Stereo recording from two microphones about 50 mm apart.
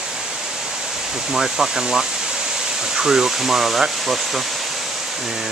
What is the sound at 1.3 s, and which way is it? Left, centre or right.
Speech, centre.